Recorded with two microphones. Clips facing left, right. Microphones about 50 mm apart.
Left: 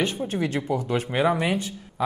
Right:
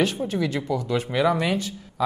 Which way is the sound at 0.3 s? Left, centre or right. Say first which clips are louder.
Even; left.